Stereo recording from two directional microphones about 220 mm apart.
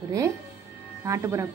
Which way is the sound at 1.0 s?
15° right (ahead or behind).